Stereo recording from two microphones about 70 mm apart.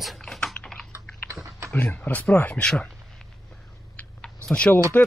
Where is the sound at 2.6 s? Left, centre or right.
Centre.